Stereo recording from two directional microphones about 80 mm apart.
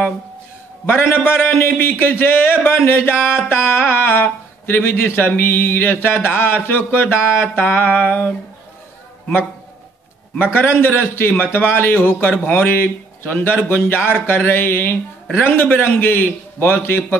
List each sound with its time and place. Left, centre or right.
0.8 s a man's voice: left
10.3 s a man's voice: left